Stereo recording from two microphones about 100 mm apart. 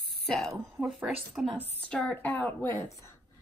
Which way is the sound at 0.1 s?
5° left (ahead or behind).